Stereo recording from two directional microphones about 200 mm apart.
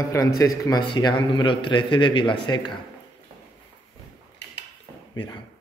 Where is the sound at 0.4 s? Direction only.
15° left (ahead or behind).